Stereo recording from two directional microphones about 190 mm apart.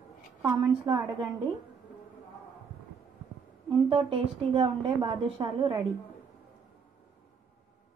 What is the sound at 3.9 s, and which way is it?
A woman's voice, 30° right (ahead or behind).